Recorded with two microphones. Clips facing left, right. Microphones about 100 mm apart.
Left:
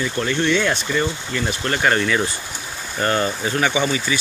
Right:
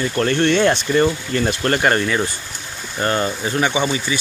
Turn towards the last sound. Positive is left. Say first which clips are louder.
# right 1 dB
turn(degrees=-25)  # may be behind; listen again after turning